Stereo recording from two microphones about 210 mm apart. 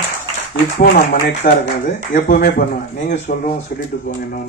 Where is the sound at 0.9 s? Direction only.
40° left (ahead or behind).